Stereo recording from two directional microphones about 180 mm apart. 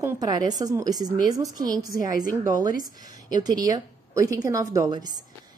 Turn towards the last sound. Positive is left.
turn(degrees=-20)  # may be behind; listen again after turning